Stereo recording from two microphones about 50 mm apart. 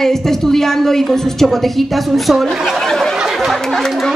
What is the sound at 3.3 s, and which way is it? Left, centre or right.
Chatter, centre.